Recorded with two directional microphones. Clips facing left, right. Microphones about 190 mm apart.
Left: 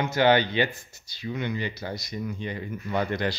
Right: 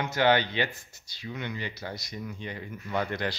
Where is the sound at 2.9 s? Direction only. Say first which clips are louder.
Left 3 dB; 10° left (ahead or behind).